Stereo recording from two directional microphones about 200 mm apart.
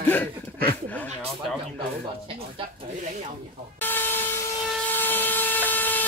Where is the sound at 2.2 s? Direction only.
30° right (ahead or behind).